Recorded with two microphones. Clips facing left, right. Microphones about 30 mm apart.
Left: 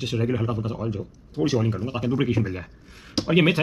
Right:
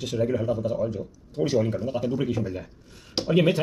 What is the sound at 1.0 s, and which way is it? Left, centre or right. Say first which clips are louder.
Speech: left 2 dB; centre.